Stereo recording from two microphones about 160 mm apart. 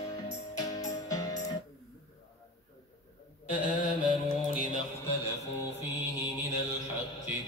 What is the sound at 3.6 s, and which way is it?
Mantra, 55° left (ahead or behind).